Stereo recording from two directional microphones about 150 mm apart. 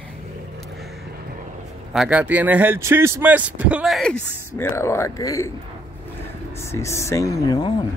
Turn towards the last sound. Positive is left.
turn(degrees=25)  # may be behind; listen again after turning